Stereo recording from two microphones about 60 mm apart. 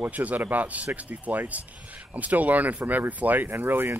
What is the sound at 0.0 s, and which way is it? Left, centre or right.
Speech, right.